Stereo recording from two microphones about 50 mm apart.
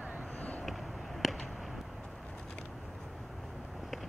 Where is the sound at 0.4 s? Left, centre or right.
Left.